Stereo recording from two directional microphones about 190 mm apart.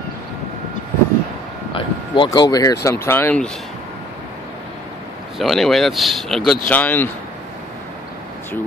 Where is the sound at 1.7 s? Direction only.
25° left (ahead or behind); by 3.5 s 10° left (ahead or behind).